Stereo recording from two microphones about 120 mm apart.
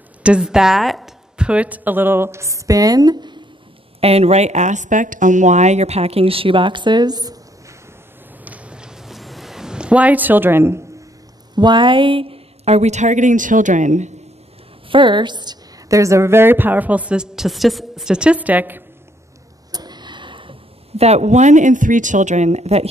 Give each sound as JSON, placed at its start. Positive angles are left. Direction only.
{"t": 0.2, "sound": "a woman's voice", "side_deg": -5}
{"t": 4.0, "sound": "speech", "side_deg": -60}
{"t": 8.5, "sound": "a sound", "side_deg": -10}
{"t": 11.5, "sound": "a woman's voice", "side_deg": -40}
{"t": 14.9, "sound": "a woman's voice", "side_deg": -45}
{"t": 19.7, "sound": "a sound", "side_deg": -35}